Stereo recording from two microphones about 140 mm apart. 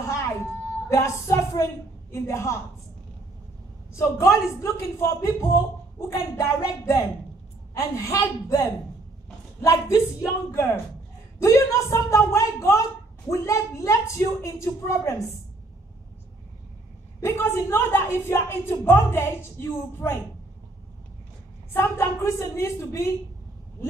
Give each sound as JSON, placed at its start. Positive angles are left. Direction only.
{"t": 0.0, "sound": "a sound", "side_deg": 20}
{"t": 0.8, "sound": "speech", "side_deg": 20}
{"t": 3.9, "sound": "speech", "side_deg": 20}
{"t": 17.2, "sound": "speech", "side_deg": 20}
{"t": 21.7, "sound": "speech", "side_deg": 20}